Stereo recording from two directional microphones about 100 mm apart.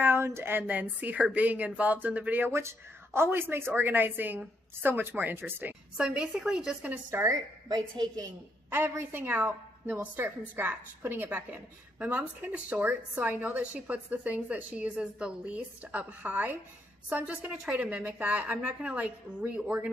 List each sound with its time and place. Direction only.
0.0 s a woman's voice: 25° right (ahead or behind)
7.1 s a woman's voice: 25° right (ahead or behind)
7.6 s a woman's voice: 40° right (ahead or behind)
8.6 s a woman's voice: 25° right (ahead or behind)